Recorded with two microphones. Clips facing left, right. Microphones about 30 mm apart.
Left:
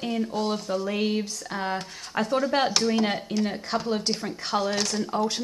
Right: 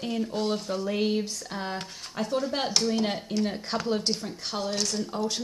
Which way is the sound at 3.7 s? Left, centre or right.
Centre.